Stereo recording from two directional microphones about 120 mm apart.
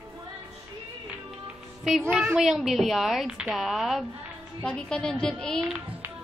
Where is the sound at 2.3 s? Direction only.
5° right (ahead or behind).